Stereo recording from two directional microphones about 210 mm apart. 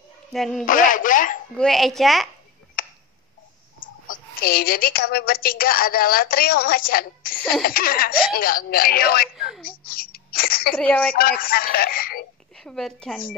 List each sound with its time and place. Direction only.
0.3 s a woman's voice: centre (ahead or behind)
0.7 s speech: 40° left (ahead or behind)
1.6 s a woman's voice: centre (ahead or behind)
2.8 s a sound: 40° left (ahead or behind)
3.8 s a woman's voice: 45° left (ahead or behind)
9.7 s a sound: 45° left (ahead or behind)
10.8 s speech: 5° left (ahead or behind)
11.1 s speech: 45° left (ahead or behind)
12.5 s a woman's voice: centre (ahead or behind)